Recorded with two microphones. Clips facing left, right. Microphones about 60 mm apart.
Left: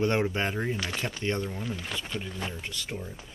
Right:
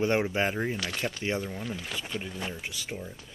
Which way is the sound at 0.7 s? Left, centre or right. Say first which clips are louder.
Left 1 dB; centre.